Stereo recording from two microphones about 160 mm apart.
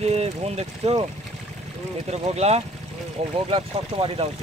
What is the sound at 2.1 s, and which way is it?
Speech, 40° right (ahead or behind).